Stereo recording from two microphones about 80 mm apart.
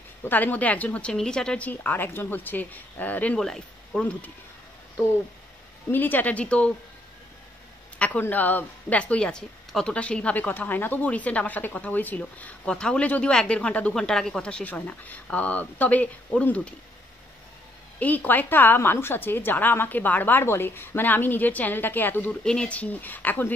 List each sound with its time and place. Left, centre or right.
0.2 s a woman's voice: left
1.1 s speech: centre
1.7 s a woman's voice: left
3.3 s speech: centre
5.9 s a woman's voice: left
8.0 s speech: left
17.9 s a woman's voice: centre
22.3 s a woman's voice: centre